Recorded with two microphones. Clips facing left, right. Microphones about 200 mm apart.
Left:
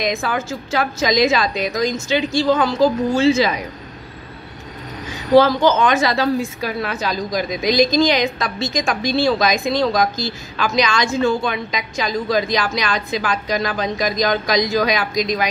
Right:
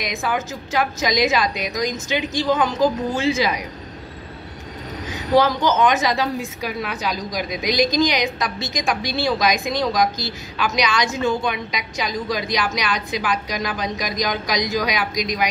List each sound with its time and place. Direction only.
0.0 s a woman's voice: 15° right (ahead or behind)
5.3 s a woman's voice: 15° right (ahead or behind)